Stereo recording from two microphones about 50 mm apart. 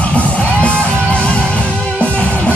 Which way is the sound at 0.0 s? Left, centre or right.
Left.